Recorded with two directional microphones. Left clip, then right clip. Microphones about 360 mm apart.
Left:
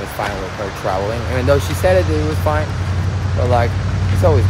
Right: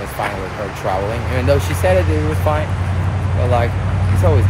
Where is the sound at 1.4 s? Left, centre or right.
Centre.